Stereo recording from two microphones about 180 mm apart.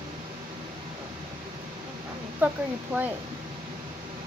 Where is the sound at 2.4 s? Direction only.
10° right (ahead or behind).